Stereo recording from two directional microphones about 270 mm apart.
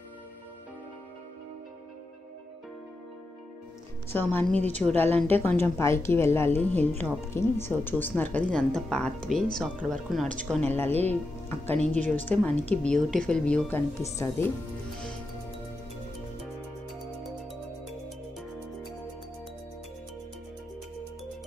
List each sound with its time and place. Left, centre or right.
4.1 s a woman's voice: centre
11.7 s speech: right
12.3 s speech: centre